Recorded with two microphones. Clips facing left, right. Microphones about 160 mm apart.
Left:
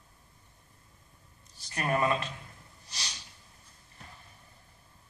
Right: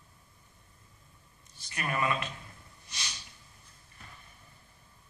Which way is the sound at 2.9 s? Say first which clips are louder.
Even; 35° left (ahead or behind).